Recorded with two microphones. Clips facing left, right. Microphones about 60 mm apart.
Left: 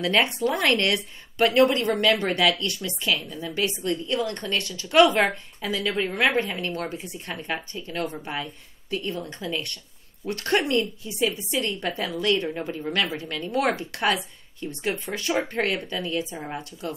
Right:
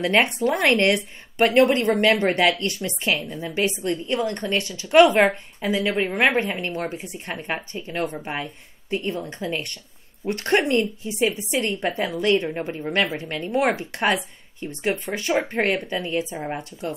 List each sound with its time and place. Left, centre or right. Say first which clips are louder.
0.0 s a woman's voice: right 3 dB; right